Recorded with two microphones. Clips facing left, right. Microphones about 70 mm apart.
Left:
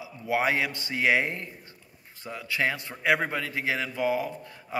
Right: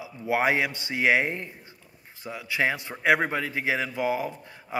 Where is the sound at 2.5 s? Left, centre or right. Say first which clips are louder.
Right 2 dB; right.